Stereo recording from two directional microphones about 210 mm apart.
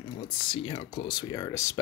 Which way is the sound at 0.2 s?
25° left (ahead or behind).